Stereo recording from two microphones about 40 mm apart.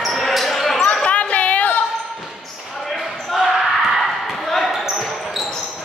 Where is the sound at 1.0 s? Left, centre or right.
Left.